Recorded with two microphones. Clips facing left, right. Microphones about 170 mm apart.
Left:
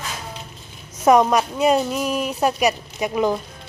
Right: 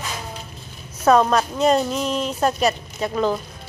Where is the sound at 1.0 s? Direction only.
15° left (ahead or behind).